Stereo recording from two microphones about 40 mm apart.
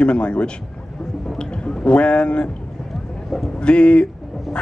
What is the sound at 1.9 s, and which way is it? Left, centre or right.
Speech, left.